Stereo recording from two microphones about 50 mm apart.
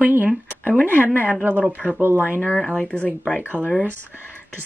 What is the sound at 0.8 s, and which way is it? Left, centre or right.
Speech, left.